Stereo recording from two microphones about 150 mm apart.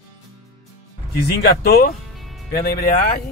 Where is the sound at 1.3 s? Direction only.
90° left.